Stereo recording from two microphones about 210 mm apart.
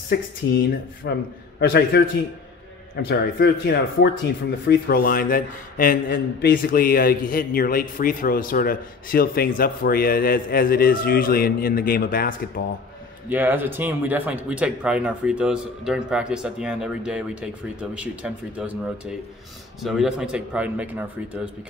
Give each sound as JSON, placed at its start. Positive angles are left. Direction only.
{"t": 1.6, "sound": "a man's voice", "side_deg": 50}
{"t": 3.1, "sound": "a man's voice", "side_deg": 50}
{"t": 13.3, "sound": "speech", "side_deg": -10}